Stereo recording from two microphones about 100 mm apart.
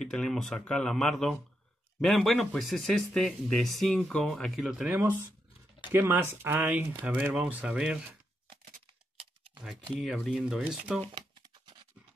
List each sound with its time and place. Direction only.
0.0 s speech: 5° left (ahead or behind)
5.9 s speech: 20° right (ahead or behind)
9.1 s typing: 60° right (ahead or behind)
9.9 s speech: centre (ahead or behind)